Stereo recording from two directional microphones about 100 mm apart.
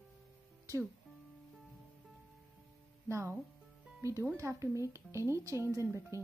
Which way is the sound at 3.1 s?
30° right (ahead or behind).